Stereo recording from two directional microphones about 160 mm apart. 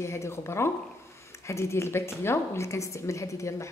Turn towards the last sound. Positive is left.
turn(degrees=20)  # may be behind; listen again after turning